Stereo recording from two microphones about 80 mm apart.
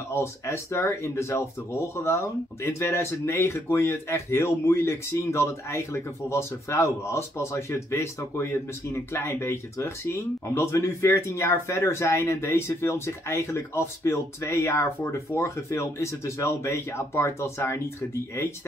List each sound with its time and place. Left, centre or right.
0.1 s speech: left